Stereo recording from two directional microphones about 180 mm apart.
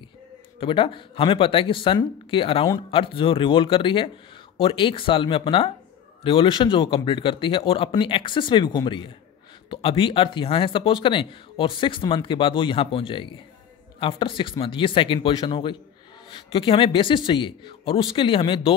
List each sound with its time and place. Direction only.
0.6 s speech: 30° left (ahead or behind)